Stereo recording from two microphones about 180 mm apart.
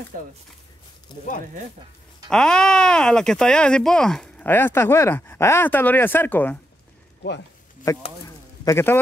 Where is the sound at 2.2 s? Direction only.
5° left (ahead or behind).